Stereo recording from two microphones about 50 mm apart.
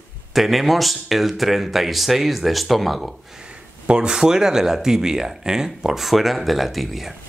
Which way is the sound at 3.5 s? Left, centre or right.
Centre.